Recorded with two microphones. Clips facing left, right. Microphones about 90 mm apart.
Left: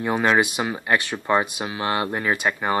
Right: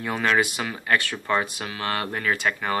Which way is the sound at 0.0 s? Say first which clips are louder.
Left 3 dB; 20° left (ahead or behind).